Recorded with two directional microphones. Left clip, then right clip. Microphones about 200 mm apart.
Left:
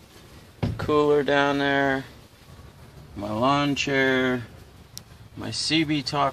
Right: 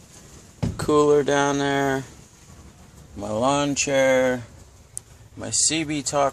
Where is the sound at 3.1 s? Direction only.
20° right (ahead or behind).